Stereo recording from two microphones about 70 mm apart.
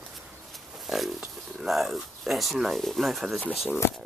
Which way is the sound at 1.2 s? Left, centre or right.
Centre.